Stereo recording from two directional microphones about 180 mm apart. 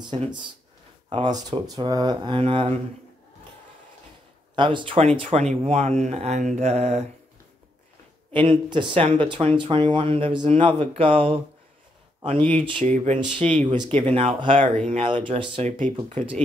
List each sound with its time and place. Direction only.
0.0 s speech: 25° right (ahead or behind)
4.6 s speech: 25° right (ahead or behind)
8.3 s speech: 25° right (ahead or behind)
12.9 s speech: 40° right (ahead or behind)
13.4 s speech: 5° left (ahead or behind)
13.7 s speech: 30° right (ahead or behind)
15.8 s speech: 40° right (ahead or behind)